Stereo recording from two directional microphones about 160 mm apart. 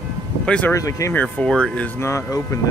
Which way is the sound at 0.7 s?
20° left (ahead or behind).